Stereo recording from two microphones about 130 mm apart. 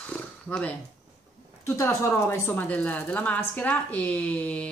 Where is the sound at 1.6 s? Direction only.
20° left (ahead or behind).